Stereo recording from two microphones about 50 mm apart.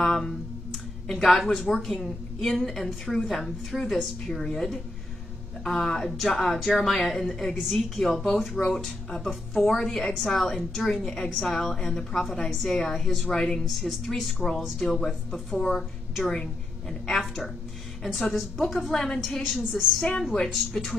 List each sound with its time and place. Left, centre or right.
0.0 s a woman's voice: centre
8.5 s a woman's voice: centre
13.7 s a woman's voice: centre
18.8 s a woman's voice: centre
20.0 s a woman's voice: centre